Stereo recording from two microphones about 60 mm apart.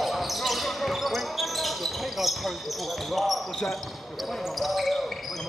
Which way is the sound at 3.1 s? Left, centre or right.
Centre.